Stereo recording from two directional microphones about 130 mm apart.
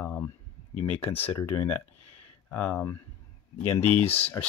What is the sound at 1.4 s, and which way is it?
Speech, 15° left (ahead or behind).